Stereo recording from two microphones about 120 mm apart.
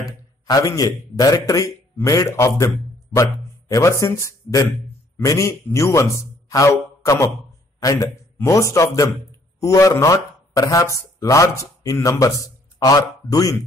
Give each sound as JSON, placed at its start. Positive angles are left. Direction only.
{"t": 0.0, "sound": "a man's voice", "side_deg": 30}
{"t": 6.5, "sound": "a sound", "side_deg": 25}
{"t": 7.8, "sound": "a man's voice", "side_deg": 30}